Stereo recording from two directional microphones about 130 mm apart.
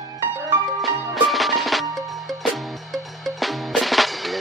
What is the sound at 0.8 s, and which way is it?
Music, centre (ahead or behind).